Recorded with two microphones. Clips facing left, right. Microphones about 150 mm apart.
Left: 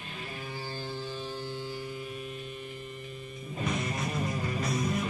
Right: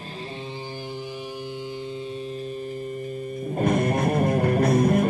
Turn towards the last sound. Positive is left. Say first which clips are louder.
# right 12 dB
turn(degrees=-55)  # may be behind; listen again after turning